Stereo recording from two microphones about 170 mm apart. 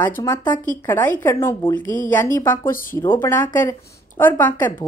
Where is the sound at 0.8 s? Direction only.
10° left (ahead or behind).